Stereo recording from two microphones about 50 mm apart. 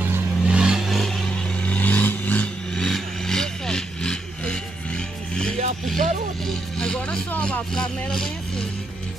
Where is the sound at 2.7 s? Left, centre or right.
Centre.